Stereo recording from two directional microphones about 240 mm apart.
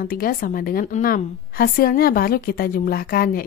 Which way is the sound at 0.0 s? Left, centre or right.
Left.